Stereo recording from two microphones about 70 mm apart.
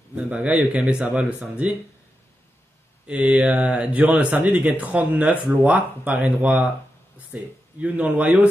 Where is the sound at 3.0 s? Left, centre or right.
Centre.